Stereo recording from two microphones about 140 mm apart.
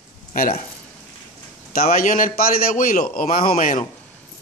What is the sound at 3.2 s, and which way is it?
Speech, 85° left.